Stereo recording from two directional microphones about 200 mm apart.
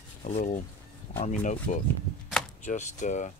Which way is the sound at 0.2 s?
35° left (ahead or behind).